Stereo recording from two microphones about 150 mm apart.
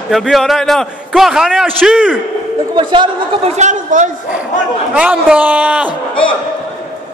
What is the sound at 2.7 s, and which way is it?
Speech, 35° right (ahead or behind).